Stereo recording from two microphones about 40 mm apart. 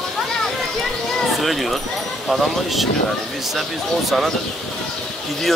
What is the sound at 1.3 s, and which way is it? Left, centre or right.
Speech, centre.